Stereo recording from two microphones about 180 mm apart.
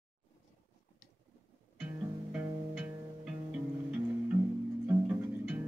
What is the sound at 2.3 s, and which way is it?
Music, 5° right (ahead or behind).